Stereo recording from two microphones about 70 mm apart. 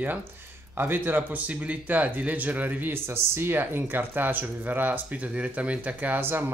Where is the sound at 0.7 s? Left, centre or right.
Right.